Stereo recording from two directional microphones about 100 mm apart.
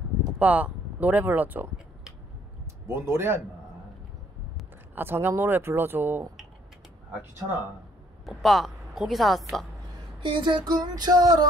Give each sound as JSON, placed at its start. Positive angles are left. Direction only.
{"t": 0.4, "sound": "speech", "side_deg": -15}
{"t": 2.9, "sound": "speech", "side_deg": -25}
{"t": 4.9, "sound": "speech", "side_deg": -20}
{"t": 8.3, "sound": "a woman's voice", "side_deg": 0}
{"t": 10.2, "sound": "music", "side_deg": -55}